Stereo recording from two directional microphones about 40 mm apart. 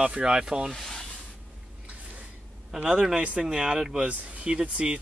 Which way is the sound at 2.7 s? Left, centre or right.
Right.